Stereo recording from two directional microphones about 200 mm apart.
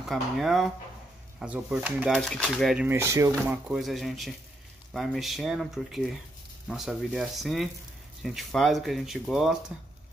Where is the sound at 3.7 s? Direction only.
Centre (ahead or behind).